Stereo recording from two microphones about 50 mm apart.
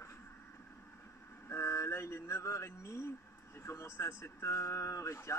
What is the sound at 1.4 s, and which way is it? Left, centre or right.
Speech, left.